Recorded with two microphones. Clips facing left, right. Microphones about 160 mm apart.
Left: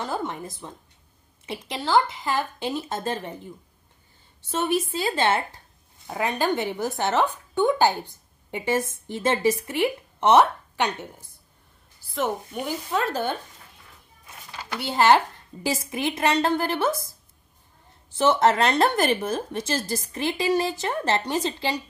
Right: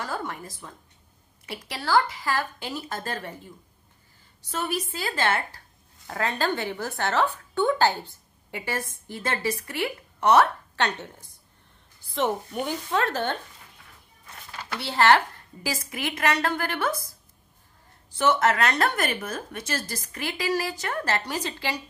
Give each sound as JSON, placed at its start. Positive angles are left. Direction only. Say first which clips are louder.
{"t": 0.0, "sound": "a woman's voice", "louder": "left 3 dB", "side_deg": 20}
{"t": 14.7, "sound": "a woman's voice", "louder": "left 2 dB", "side_deg": 15}
{"t": 18.1, "sound": "a woman's voice", "louder": "left 3 dB", "side_deg": 25}